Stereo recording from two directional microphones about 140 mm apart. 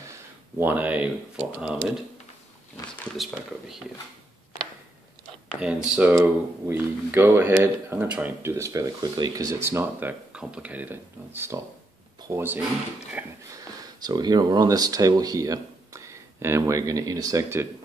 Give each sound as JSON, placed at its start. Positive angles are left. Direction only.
{"t": 0.6, "sound": "speech", "side_deg": -10}
{"t": 3.2, "sound": "speech", "side_deg": 0}
{"t": 5.6, "sound": "speech", "side_deg": -5}
{"t": 13.5, "sound": "speech", "side_deg": -25}